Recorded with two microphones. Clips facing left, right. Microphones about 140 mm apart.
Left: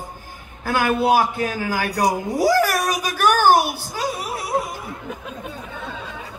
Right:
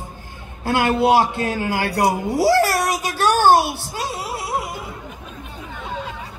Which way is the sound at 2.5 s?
75° right (ahead or behind).